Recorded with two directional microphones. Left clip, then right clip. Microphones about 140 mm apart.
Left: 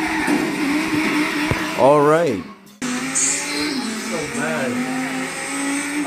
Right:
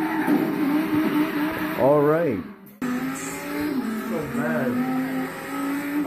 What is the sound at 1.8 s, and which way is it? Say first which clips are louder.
Speech: left 5 dB; 25° left (ahead or behind).